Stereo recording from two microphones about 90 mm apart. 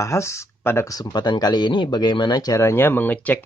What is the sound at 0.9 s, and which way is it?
Speech, 50° left (ahead or behind).